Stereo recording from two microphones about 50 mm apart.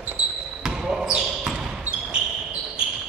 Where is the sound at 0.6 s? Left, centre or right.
Centre.